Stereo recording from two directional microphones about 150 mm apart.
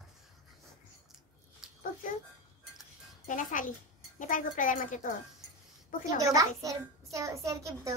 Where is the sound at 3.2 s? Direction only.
60° left (ahead or behind).